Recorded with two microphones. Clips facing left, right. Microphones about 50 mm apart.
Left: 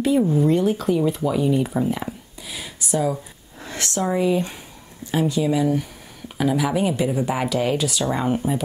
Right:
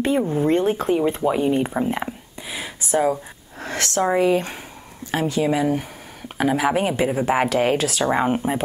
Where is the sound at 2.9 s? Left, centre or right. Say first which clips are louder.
Right 3 dB; right.